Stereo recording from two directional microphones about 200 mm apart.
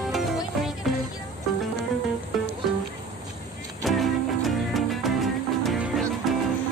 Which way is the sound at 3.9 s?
Centre (ahead or behind).